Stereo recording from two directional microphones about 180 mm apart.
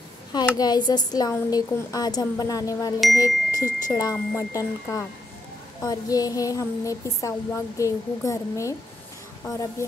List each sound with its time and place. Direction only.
0.6 s speech: 25° left (ahead or behind)